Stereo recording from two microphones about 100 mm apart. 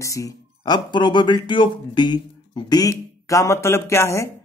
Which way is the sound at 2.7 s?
35° left (ahead or behind).